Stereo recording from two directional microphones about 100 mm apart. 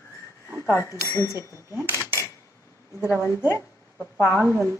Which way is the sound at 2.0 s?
25° right (ahead or behind).